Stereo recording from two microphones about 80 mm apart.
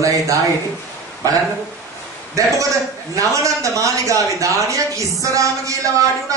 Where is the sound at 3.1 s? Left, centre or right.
Right.